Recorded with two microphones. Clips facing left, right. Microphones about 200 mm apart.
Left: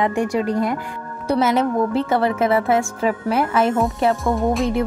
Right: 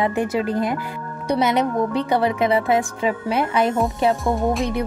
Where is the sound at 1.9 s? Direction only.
Centre (ahead or behind).